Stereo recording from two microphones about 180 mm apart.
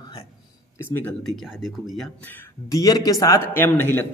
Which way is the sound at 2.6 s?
20° left (ahead or behind).